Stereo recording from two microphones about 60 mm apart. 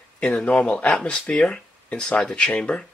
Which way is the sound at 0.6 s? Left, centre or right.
Centre.